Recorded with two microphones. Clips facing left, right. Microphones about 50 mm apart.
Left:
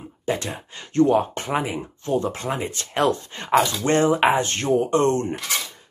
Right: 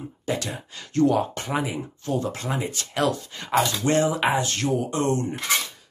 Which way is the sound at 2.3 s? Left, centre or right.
Left.